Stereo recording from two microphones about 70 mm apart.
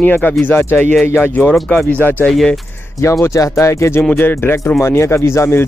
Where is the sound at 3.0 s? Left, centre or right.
Left.